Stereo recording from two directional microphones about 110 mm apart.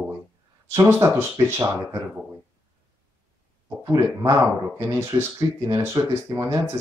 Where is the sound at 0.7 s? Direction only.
25° right (ahead or behind).